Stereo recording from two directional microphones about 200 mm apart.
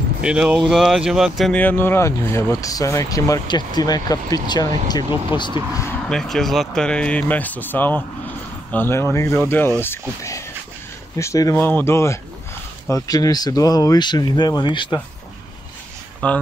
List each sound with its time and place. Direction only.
0.2 s speech: 5° right (ahead or behind); by 5.5 s 20° left (ahead or behind)
5.8 s speech: 5° left (ahead or behind); by 15.0 s 25° left (ahead or behind)
16.2 s speech: 5° left (ahead or behind)